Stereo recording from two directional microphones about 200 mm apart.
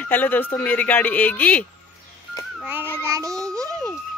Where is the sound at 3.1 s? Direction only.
15° right (ahead or behind).